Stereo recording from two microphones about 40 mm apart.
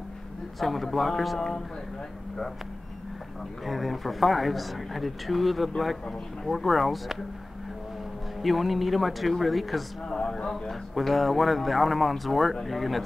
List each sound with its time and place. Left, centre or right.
0.6 s speech: centre
3.6 s speech: centre
6.0 s speech: centre
6.5 s speech: centre
8.4 s speech: centre
10.0 s speech: centre
10.7 s speech: centre